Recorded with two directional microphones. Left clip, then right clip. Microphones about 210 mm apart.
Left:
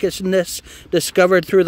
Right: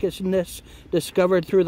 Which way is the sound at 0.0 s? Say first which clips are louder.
Left 5 dB; 15° left (ahead or behind).